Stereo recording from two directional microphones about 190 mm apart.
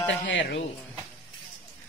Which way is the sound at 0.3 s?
70° left (ahead or behind).